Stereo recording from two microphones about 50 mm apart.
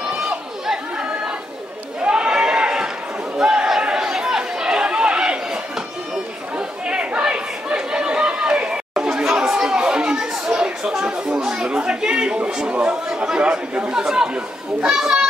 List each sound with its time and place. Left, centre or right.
0.0 s crowd: centre
2.0 s a sound: centre
3.8 s chatter: centre
6.9 s chatter: right
13.1 s speech: centre